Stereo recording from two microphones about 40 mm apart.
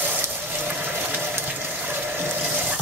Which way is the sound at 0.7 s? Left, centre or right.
Right.